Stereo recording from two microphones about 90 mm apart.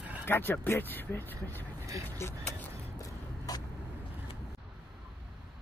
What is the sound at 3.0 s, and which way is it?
Vehicle, 45° left (ahead or behind).